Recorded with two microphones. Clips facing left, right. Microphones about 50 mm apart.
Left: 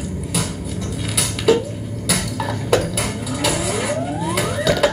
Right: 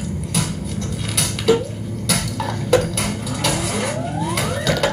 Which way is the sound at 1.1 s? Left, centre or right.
Centre.